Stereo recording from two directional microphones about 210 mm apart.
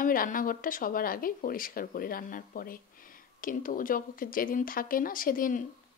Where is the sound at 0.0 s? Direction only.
40° left (ahead or behind).